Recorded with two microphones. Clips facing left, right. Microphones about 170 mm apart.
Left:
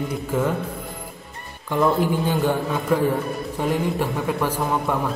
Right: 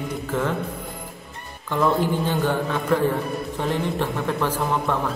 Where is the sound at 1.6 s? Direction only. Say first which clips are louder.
Left 1 dB; 10° left (ahead or behind).